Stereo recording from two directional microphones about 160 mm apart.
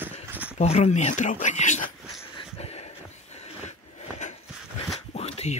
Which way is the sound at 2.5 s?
40° left (ahead or behind).